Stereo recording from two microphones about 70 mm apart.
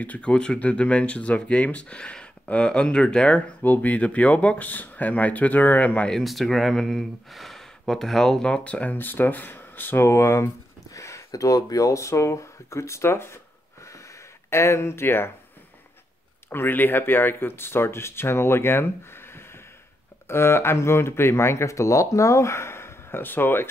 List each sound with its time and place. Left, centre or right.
0.0 s speech: centre
3.6 s speech: left
6.0 s speech: centre
8.9 s speech: left
13.8 s a sound: left
16.4 s speech: left